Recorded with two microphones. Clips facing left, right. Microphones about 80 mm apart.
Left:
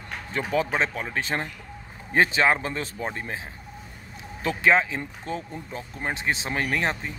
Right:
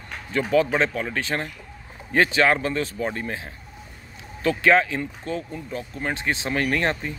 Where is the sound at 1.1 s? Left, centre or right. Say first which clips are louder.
Right 1 dB; centre.